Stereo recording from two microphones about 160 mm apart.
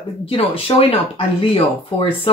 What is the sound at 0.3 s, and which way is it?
Speech, 35° left (ahead or behind).